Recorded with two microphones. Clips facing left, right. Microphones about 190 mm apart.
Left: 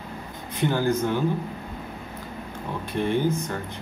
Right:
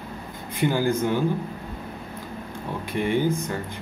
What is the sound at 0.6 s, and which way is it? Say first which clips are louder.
Speech: right 1 dB; 10° right (ahead or behind).